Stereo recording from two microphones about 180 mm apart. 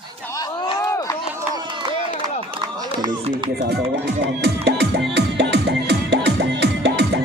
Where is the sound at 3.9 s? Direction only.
70° right (ahead or behind).